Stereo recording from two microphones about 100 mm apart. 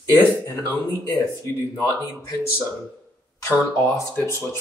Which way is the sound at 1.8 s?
30° left (ahead or behind).